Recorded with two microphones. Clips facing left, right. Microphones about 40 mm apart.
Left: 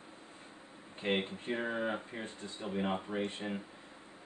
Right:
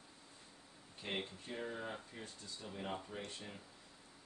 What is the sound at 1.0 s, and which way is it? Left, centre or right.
Speech, left.